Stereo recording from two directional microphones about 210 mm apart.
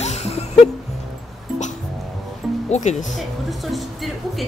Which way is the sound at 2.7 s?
35° left (ahead or behind).